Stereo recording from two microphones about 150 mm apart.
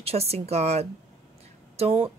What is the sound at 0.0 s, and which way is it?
A woman's voice, 45° right (ahead or behind).